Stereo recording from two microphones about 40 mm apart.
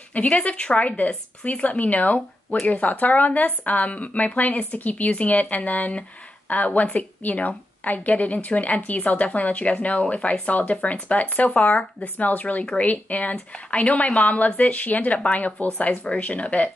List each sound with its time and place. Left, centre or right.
0.1 s a woman's voice: left